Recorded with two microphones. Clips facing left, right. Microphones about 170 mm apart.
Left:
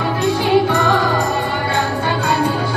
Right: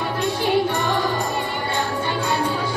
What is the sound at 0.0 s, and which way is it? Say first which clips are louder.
Music: left 5 dB; 90° left.